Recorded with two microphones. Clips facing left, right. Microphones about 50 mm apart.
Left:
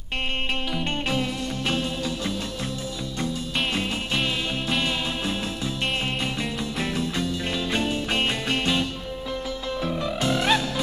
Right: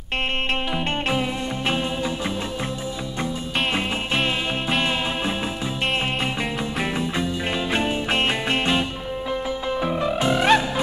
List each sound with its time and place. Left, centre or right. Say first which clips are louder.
0.7 s music: right 1 dB; centre
3.7 s music: right 3 dB; right
6.8 s music: right 2 dB; right